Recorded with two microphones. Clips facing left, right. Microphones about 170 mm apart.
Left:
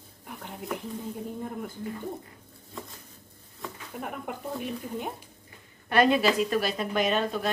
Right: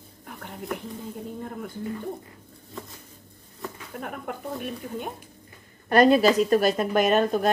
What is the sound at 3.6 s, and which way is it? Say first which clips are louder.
Speech: right 2 dB; centre (ahead or behind).